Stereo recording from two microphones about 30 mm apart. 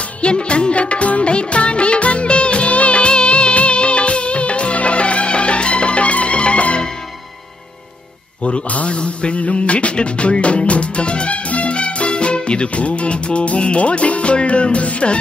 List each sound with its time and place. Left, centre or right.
0.2 s music: left
1.3 s music of bollywood: left
8.6 s music: left